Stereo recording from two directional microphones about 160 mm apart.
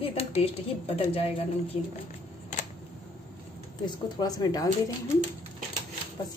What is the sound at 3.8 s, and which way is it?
Speech, 25° left (ahead or behind).